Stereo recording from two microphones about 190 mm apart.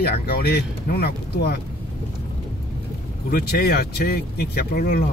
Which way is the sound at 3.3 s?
50° left (ahead or behind).